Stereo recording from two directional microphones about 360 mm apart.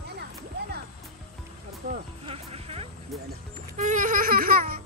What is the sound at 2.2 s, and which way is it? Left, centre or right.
Music, centre.